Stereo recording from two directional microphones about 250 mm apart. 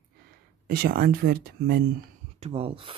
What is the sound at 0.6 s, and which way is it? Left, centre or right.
Speech, right.